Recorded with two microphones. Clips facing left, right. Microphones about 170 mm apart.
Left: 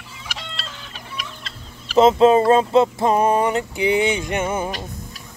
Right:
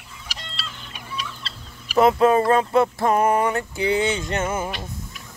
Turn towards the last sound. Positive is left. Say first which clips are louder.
# left 2 dB
turn(degrees=15)  # may be behind; listen again after turning